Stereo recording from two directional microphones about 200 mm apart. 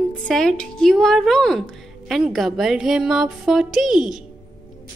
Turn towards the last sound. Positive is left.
turn(degrees=0)  # may be behind; listen again after turning